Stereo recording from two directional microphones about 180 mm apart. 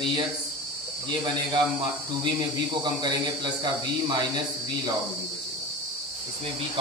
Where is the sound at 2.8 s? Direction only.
25° right (ahead or behind).